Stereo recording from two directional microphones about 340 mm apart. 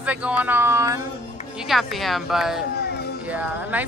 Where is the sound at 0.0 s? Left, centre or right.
Centre.